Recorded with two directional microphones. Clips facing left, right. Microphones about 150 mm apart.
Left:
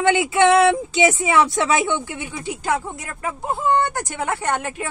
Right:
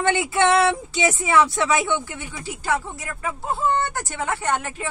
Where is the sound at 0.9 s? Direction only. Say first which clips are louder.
Left 3 dB; 15° left (ahead or behind).